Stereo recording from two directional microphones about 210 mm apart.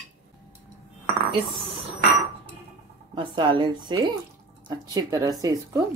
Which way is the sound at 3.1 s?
20° right (ahead or behind).